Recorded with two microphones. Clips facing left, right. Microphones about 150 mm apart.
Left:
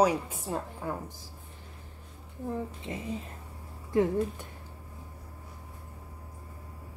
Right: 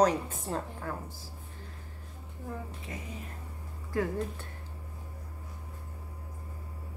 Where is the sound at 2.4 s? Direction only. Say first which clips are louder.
Left 6 dB; 25° left (ahead or behind).